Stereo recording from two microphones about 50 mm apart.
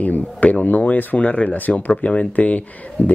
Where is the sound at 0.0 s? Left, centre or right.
Left.